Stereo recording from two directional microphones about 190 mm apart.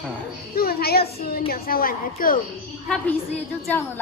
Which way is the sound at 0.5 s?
55° left (ahead or behind).